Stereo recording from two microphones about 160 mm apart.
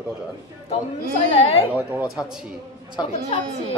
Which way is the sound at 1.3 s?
40° left (ahead or behind).